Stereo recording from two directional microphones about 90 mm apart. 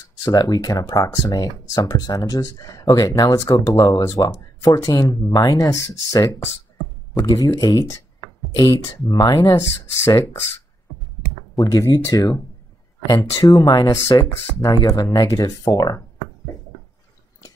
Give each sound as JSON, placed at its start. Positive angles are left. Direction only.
{"t": 0.2, "sound": "speech", "side_deg": 45}
{"t": 11.6, "sound": "speech", "side_deg": 45}